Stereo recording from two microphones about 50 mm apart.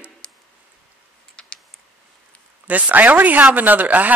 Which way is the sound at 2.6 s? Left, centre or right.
Right.